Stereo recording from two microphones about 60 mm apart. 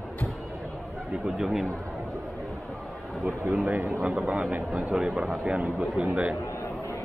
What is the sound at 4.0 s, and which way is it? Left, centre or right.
Speech, centre.